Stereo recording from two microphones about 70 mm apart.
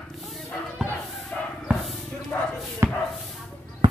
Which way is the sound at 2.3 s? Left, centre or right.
Left.